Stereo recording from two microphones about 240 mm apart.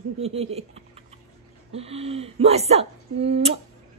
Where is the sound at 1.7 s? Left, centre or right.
Right.